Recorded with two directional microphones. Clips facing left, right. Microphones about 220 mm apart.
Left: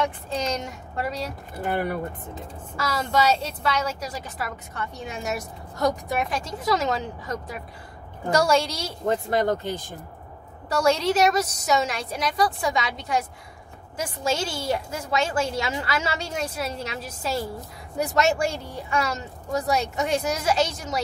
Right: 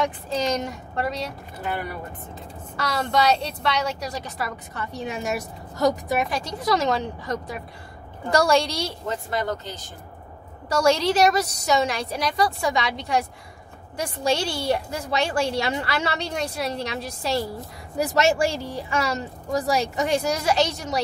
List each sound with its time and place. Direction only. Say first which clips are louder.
0.0 s a woman's voice: right 2 dB; centre (ahead or behind)
1.6 s speech: left 4 dB; 50° left (ahead or behind)
2.8 s a woman's voice: right 1 dB; 5° left (ahead or behind)
9.0 s speech: left 8 dB; 50° left (ahead or behind)
10.7 s a woman's voice: right 1 dB; centre (ahead or behind)
14.4 s a woman's voice: right 2 dB; 65° right (ahead or behind)
14.7 s a woman's voice: right 2 dB; centre (ahead or behind)
18.6 s speech: right 4 dB; 80° right
18.9 s a woman's voice: even; centre (ahead or behind)